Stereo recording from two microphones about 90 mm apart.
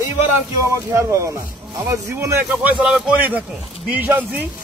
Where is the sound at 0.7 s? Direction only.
35° right (ahead or behind).